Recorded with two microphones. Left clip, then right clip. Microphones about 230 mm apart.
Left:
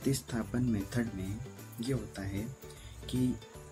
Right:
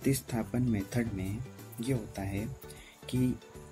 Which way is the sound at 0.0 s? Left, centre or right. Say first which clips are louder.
Right 2 dB; centre.